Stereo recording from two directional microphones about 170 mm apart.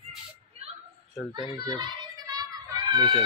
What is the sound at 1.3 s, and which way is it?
Children playing, 25° right (ahead or behind).